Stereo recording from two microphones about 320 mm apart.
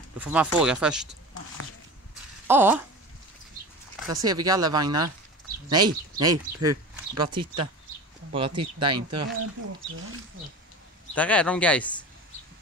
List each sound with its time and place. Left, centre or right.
0.2 s speech: centre
2.4 s a sound: centre
4.1 s speech: centre
8.9 s speech: right
11.1 s speech: centre